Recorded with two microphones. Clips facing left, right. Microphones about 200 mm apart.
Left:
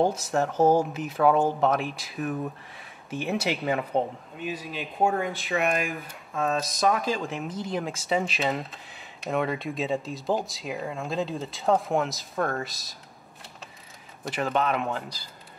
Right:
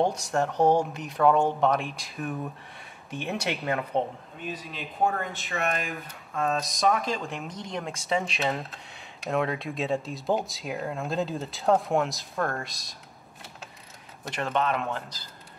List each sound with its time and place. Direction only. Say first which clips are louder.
0.0 s speech: left 1 dB; centre (ahead or behind)
14.2 s speech: left 2 dB; 5° left (ahead or behind)